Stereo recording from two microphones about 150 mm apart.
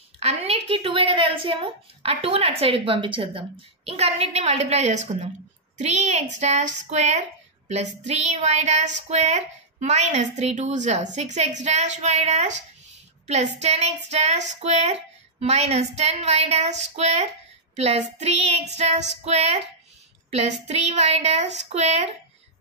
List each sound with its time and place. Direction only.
0.2 s a woman's voice: 45° right (ahead or behind)